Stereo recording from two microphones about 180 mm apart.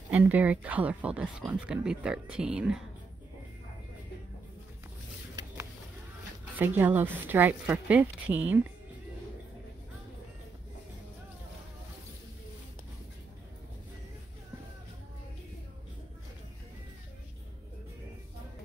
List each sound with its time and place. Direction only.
0.1 s speech: 10° right (ahead or behind)
5.3 s a sound: 20° right (ahead or behind)
6.6 s speech: 10° right (ahead or behind)